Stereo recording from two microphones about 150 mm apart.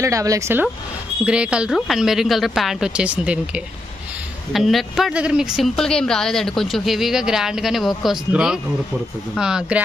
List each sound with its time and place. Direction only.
0.0 s speech: 20° right (ahead or behind)
1.2 s speech: 5° right (ahead or behind)